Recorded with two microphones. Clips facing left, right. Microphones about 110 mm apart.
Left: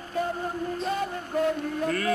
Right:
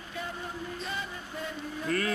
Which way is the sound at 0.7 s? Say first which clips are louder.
Left 9 dB; 45° left (ahead or behind).